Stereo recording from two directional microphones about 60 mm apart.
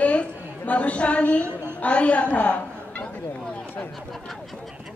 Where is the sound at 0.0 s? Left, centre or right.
Left.